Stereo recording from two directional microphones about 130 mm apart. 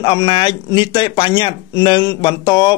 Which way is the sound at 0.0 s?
35° left (ahead or behind).